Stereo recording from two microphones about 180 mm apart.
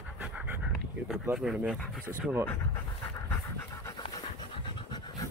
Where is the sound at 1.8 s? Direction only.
10° left (ahead or behind).